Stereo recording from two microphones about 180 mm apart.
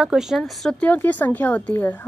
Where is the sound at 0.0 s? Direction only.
Centre (ahead or behind).